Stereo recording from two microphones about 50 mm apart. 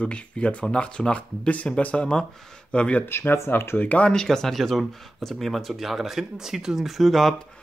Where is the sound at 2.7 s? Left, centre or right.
Left.